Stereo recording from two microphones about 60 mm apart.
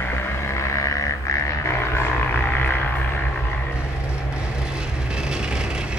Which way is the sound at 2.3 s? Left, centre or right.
Left.